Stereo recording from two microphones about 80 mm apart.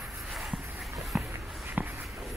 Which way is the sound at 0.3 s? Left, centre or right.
Centre.